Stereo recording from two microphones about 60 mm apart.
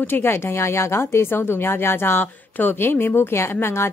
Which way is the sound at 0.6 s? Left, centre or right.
Left.